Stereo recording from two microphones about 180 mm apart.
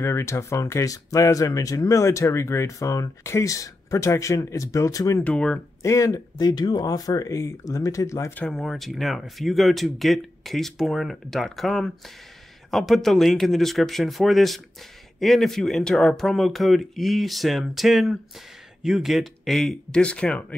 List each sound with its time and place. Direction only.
0.0 s speech: 15° left (ahead or behind)
5.8 s speech: 15° left (ahead or behind)
8.5 s speech: centre (ahead or behind)